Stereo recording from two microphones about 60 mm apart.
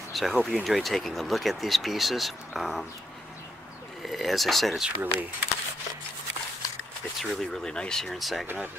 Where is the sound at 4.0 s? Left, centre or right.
Centre.